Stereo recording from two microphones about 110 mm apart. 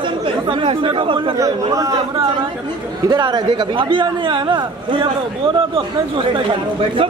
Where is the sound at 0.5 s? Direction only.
50° right (ahead or behind).